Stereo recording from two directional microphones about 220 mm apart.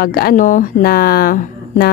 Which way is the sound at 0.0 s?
45° left (ahead or behind).